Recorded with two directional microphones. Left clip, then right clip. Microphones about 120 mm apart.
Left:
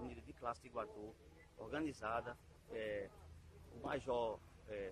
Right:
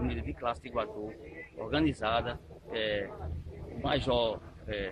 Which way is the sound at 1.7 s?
25° left (ahead or behind).